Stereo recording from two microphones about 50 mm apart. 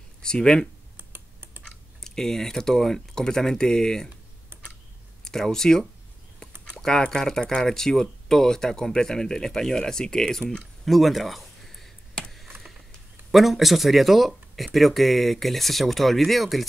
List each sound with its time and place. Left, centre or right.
0.2 s speech: centre
0.9 s computer keyboard: right
2.0 s speech: centre
5.2 s speech: centre
10.9 s a sound: centre
13.3 s speech: centre